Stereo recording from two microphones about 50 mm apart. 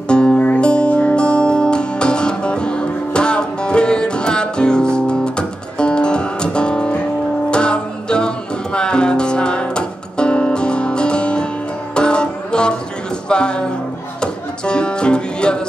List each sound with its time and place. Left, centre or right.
0.1 s music: left